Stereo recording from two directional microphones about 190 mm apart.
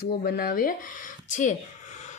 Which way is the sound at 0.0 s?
55° left (ahead or behind).